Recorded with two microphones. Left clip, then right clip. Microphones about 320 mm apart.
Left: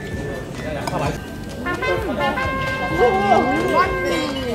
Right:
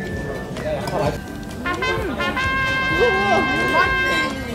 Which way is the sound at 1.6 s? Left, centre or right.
Right.